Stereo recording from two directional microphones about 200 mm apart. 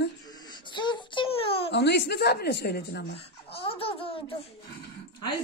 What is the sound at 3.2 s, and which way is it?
A child's voice, 30° left (ahead or behind).